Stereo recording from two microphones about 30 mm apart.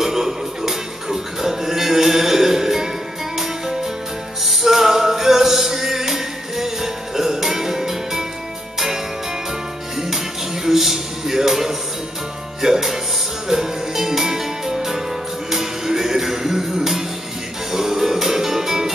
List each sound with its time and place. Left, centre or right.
0.0 s music: centre